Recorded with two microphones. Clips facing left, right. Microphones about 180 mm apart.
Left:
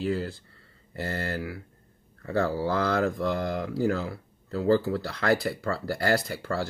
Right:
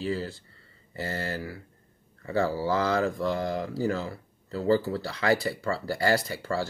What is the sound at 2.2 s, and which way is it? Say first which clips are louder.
Speech: even; 55° left (ahead or behind).